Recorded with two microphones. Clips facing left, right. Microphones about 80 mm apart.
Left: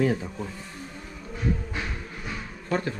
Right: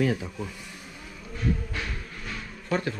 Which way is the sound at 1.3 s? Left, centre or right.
Centre.